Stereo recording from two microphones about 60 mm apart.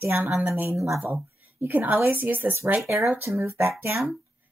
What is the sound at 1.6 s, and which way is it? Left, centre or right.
Speech, right.